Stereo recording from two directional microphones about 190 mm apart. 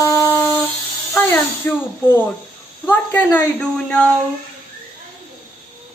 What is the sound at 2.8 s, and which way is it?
A woman's voice, 10° left (ahead or behind).